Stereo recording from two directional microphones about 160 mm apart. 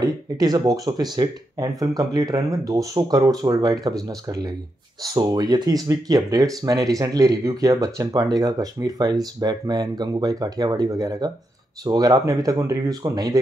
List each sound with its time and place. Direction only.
0.0 s speech: 25° right (ahead or behind)